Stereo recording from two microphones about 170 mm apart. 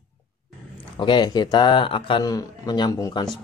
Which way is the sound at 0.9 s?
25° left (ahead or behind).